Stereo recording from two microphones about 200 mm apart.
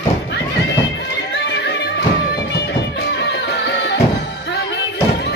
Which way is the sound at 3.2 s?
60° left (ahead or behind).